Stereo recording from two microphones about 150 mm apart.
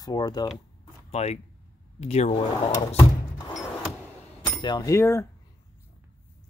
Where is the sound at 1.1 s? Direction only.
45° left (ahead or behind).